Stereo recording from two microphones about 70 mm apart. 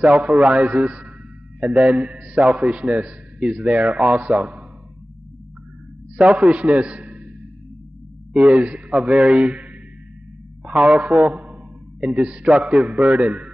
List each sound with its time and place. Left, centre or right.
0.0 s a man's voice: centre
6.1 s a man's voice: centre
8.3 s a man's voice: centre